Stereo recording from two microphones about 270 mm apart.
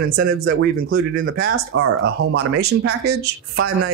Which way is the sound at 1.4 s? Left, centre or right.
Right.